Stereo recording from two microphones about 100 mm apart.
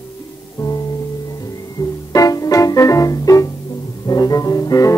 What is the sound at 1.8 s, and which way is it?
Music, 35° left (ahead or behind).